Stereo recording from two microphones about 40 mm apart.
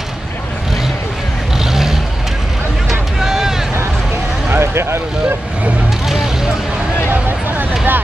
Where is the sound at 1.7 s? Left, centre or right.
Centre.